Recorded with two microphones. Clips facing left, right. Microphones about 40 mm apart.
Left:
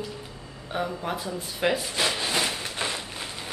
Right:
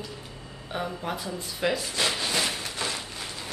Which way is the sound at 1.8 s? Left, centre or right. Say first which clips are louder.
Left 1 dB; centre.